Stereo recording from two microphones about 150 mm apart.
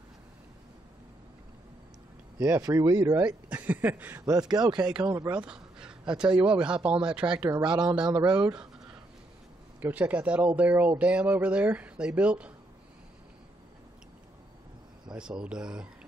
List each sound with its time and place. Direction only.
2.3 s a man's voice: 20° right (ahead or behind)
3.3 s speech: 10° right (ahead or behind)
4.2 s a man's voice: 25° right (ahead or behind)
5.3 s a sound: 5° right (ahead or behind)
6.3 s speech: 35° right (ahead or behind)
6.6 s speech: 5° right (ahead or behind)
7.6 s a man's voice: 30° right (ahead or behind)
9.8 s speech: 10° right (ahead or behind)
15.1 s speech: 5° right (ahead or behind)